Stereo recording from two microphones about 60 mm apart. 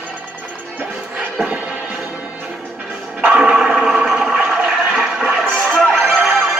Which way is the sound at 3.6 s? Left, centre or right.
Centre.